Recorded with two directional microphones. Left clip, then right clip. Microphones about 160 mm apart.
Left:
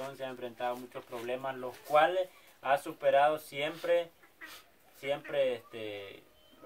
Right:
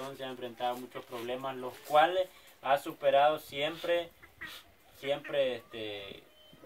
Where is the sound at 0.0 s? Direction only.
15° left (ahead or behind).